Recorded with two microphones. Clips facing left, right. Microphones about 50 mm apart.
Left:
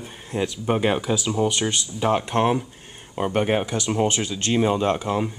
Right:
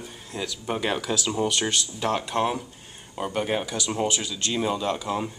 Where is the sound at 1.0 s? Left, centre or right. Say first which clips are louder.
Left 3 dB; centre.